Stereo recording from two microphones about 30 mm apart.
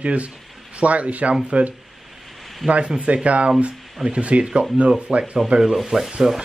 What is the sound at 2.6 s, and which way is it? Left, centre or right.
Speech, right.